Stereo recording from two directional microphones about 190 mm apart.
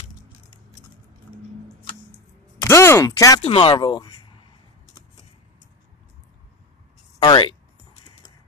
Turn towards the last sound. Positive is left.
turn(degrees=25)  # may be behind; listen again after turning